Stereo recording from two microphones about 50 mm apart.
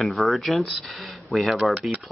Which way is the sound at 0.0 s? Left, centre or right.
Centre.